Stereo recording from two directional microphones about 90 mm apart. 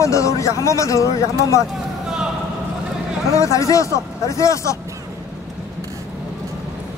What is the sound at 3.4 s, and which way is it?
Speech, 35° left (ahead or behind).